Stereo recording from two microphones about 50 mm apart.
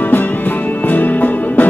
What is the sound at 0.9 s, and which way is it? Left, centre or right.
Music, left.